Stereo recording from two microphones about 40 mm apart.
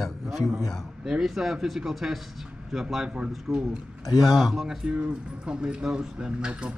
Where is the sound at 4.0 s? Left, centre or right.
Centre.